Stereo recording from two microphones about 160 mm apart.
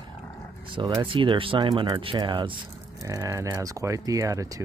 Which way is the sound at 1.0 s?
30° right (ahead or behind).